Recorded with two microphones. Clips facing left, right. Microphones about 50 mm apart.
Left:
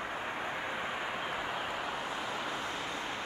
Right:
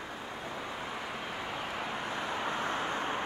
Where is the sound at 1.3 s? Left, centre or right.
Centre.